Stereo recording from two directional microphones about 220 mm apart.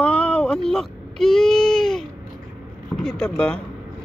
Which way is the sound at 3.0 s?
5° left (ahead or behind).